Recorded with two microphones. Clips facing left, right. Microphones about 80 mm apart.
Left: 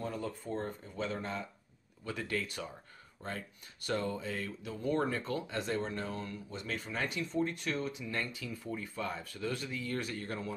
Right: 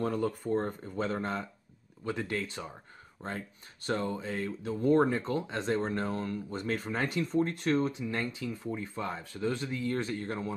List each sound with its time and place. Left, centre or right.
0.0 s speech: right
2.0 s speech: right
5.1 s speech: right